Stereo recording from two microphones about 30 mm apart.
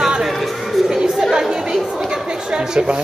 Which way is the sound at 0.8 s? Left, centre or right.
Right.